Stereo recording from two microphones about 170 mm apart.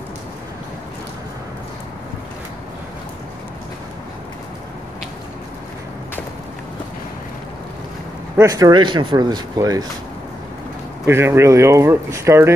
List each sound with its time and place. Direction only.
8.4 s speech: 20° right (ahead or behind)
11.1 s speech: 15° right (ahead or behind)